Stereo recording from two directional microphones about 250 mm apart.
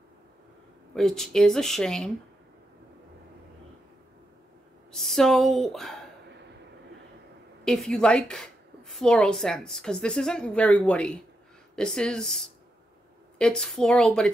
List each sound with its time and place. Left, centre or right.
0.9 s a woman's voice: centre
4.9 s speech: centre
7.6 s a woman's voice: centre